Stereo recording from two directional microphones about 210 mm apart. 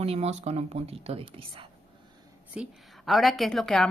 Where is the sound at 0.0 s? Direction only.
30° right (ahead or behind).